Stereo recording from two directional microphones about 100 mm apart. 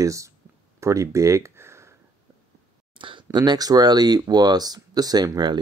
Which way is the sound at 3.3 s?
45° right (ahead or behind).